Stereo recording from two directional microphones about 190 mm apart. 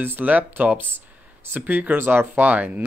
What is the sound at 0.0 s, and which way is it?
Speech, 10° right (ahead or behind).